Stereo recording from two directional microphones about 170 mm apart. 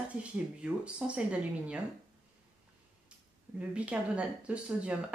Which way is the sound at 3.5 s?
5° right (ahead or behind).